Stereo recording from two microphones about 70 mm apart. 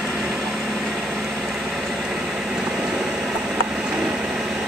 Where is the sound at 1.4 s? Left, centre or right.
Centre.